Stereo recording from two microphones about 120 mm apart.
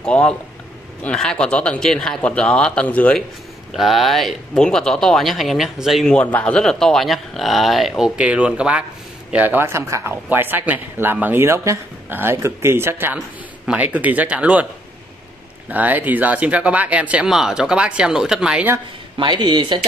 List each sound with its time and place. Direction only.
0.0 s speech: 10° left (ahead or behind)
3.7 s speech: centre (ahead or behind)
6.1 s speech: 10° left (ahead or behind)
8.0 s speech: 10° right (ahead or behind)
15.7 s speech: 15° right (ahead or behind)
19.1 s speech: 40° right (ahead or behind)